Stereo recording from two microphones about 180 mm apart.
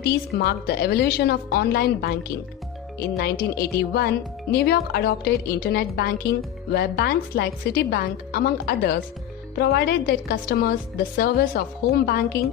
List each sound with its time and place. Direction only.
0.0 s speech: 60° left (ahead or behind)